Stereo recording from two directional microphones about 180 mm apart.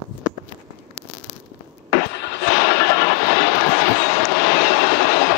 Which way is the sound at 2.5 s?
60° left (ahead or behind).